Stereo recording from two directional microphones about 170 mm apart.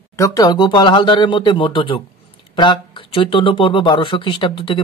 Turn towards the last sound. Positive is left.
turn(degrees=30)  # may be behind; listen again after turning